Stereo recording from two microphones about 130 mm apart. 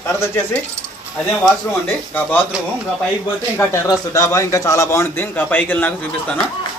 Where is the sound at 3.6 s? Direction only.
20° left (ahead or behind).